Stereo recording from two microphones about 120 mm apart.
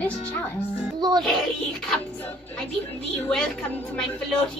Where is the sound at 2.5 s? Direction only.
5° left (ahead or behind).